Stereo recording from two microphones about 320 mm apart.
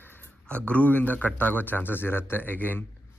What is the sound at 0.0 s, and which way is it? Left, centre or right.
Speech, centre.